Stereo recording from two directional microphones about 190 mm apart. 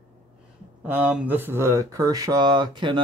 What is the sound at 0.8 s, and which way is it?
Speech, 10° right (ahead or behind).